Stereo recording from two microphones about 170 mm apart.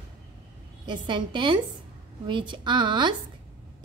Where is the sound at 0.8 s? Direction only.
25° right (ahead or behind).